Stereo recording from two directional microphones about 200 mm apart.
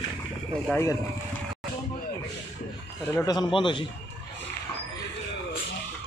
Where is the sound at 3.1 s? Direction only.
20° left (ahead or behind).